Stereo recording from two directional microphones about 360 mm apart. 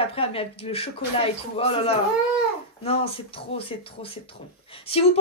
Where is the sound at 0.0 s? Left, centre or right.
Centre.